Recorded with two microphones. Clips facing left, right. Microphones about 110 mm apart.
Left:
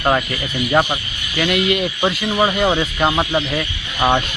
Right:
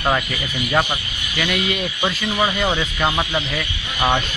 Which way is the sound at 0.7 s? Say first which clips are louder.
Left 3 dB; 15° left (ahead or behind).